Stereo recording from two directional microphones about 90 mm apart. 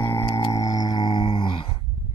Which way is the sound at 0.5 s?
45° left (ahead or behind).